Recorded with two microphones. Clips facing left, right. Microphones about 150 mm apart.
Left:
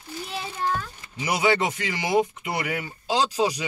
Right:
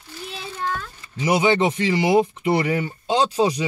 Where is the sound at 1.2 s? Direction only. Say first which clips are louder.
Right 4 dB; 25° right (ahead or behind).